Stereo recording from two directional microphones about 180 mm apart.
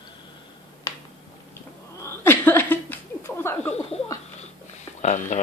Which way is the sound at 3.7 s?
35° left (ahead or behind).